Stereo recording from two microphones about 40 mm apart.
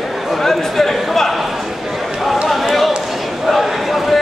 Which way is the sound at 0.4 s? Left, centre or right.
Centre.